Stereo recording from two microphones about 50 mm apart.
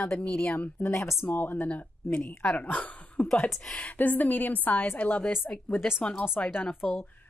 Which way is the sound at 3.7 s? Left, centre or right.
Left.